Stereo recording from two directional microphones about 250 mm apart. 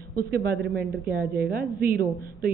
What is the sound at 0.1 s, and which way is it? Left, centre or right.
A woman's voice, right.